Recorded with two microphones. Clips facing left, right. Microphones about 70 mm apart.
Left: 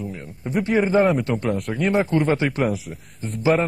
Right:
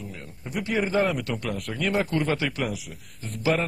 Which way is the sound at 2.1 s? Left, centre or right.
Left.